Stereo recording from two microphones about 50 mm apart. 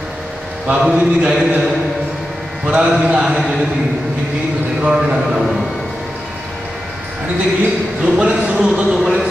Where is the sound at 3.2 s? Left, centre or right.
Centre.